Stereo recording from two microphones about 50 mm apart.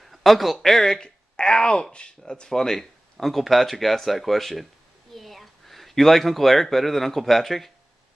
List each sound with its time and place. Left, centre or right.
0.0 s speech: centre
1.0 s speech: centre